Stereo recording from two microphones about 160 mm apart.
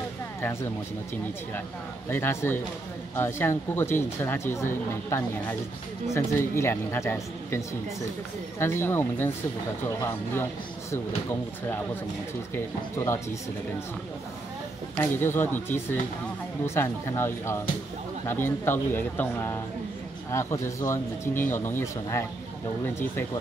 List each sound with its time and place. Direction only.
0.4 s speech: 15° left (ahead or behind)
2.0 s speech: 15° left (ahead or behind)
12.5 s speech: 20° left (ahead or behind)
15.0 s speech: 15° left (ahead or behind)